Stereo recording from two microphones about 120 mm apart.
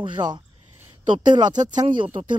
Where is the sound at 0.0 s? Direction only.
40° right (ahead or behind).